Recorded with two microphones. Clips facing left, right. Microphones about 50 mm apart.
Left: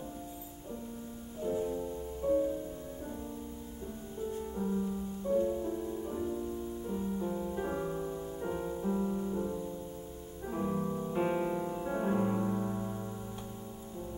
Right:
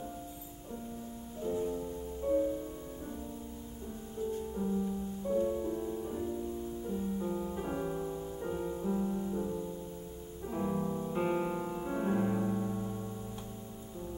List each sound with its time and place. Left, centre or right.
1.4 s music: centre
4.6 s music: centre
5.3 s music: centre
10.6 s music: centre
12.5 s music: centre